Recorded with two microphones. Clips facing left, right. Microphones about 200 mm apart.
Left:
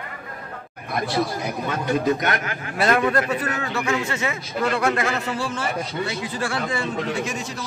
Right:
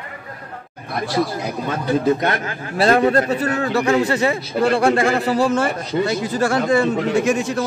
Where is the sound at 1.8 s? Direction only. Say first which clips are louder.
Right 4 dB; 35° right (ahead or behind); by 7.6 s 55° right (ahead or behind).